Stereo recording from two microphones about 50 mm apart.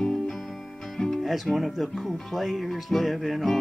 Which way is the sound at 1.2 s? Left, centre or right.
Centre.